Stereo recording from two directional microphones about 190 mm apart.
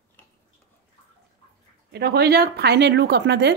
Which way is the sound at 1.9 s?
55° right (ahead or behind).